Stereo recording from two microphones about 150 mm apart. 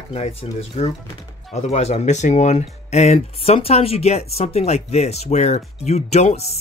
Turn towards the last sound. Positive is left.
turn(degrees=45)  # may be behind; listen again after turning